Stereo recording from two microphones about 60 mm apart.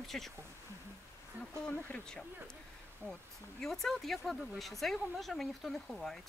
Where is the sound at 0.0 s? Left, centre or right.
Centre.